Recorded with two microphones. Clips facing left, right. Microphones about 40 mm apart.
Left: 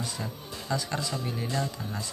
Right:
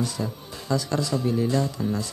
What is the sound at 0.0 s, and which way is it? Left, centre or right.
Speech, centre.